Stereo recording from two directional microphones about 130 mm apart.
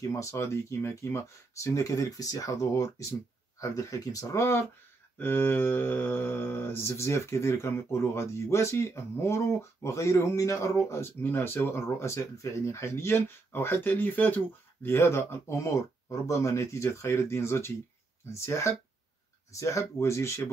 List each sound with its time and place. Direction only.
0.0 s mantra: 25° left (ahead or behind)